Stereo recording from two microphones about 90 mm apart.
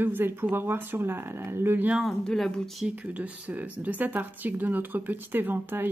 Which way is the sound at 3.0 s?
15° right (ahead or behind).